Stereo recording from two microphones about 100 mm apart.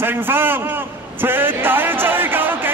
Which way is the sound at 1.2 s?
20° right (ahead or behind).